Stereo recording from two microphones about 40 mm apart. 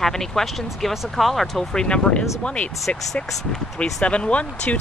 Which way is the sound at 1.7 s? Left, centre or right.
Centre.